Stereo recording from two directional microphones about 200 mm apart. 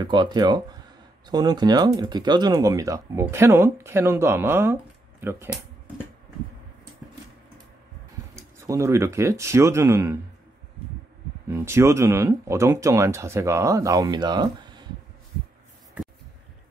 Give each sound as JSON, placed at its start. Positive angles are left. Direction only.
{"t": 0.0, "sound": "speech", "side_deg": -20}
{"t": 8.4, "sound": "speech", "side_deg": -15}
{"t": 11.4, "sound": "speech", "side_deg": -15}